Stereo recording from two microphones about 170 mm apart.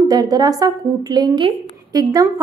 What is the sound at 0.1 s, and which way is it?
A woman's voice, 25° right (ahead or behind).